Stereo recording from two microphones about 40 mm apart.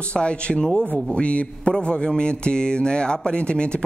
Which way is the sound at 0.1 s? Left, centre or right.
Left.